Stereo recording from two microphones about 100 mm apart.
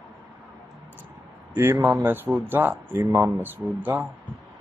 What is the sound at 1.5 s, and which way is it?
Speech, 30° right (ahead or behind).